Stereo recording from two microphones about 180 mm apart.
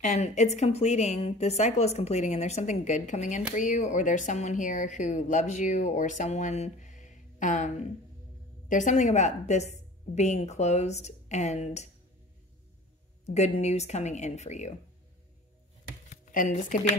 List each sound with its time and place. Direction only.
0.0 s a woman's voice: 45° left (ahead or behind)
13.2 s a woman's voice: 40° left (ahead or behind)
16.1 s a sound: 45° left (ahead or behind)